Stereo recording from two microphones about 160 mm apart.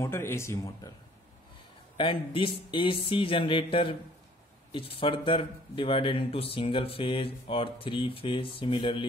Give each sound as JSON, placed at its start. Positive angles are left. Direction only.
{"t": 0.0, "sound": "speech", "side_deg": 15}
{"t": 2.0, "sound": "speech", "side_deg": 35}